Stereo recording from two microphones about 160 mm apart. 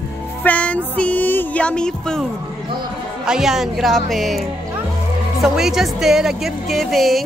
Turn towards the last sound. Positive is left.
turn(degrees=0)  # may be behind; listen again after turning